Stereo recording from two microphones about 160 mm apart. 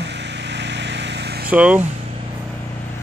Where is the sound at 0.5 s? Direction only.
90° right.